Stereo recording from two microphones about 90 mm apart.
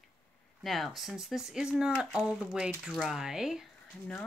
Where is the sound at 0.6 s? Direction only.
Centre (ahead or behind).